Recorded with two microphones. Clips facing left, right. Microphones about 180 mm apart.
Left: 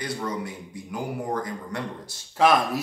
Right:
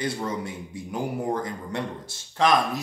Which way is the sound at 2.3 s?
5° left (ahead or behind).